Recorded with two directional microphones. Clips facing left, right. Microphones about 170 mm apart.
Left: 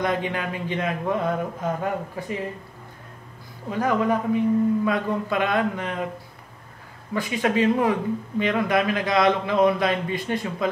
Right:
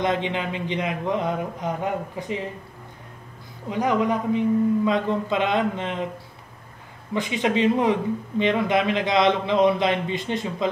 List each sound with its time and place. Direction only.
0.0 s speech: 20° right (ahead or behind)
3.7 s speech: 20° right (ahead or behind)
7.2 s speech: 20° right (ahead or behind)